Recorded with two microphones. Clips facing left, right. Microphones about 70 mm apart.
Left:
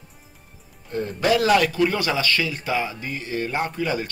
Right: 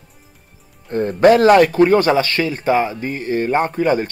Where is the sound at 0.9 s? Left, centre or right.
Right.